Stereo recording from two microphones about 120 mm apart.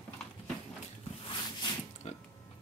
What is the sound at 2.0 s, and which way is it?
Mechanisms, 60° left (ahead or behind).